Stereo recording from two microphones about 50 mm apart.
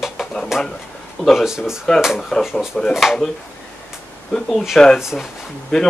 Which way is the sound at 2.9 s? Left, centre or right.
Centre.